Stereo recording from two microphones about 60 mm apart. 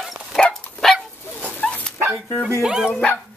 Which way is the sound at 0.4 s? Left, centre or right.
Centre.